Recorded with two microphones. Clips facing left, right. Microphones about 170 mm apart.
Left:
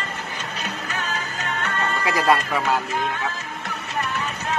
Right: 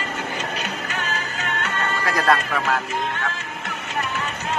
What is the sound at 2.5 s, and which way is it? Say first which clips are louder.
Speech: left 1 dB; centre (ahead or behind).